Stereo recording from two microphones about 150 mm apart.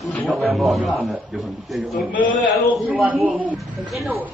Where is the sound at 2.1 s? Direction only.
60° left (ahead or behind).